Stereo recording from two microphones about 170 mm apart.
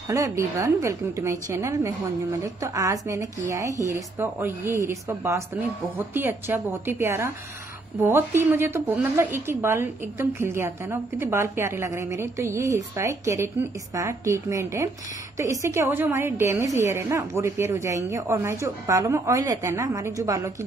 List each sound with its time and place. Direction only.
0.1 s a woman's voice: 20° right (ahead or behind)